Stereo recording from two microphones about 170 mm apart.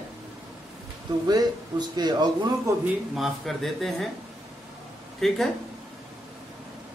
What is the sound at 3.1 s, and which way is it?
Speech, centre (ahead or behind).